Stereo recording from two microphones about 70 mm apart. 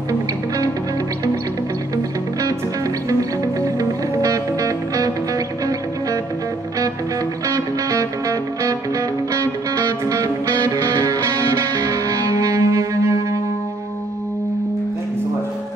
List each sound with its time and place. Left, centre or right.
3.1 s music: right
7.4 s music: right